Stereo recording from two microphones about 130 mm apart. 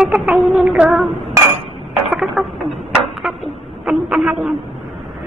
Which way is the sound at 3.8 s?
10° right (ahead or behind).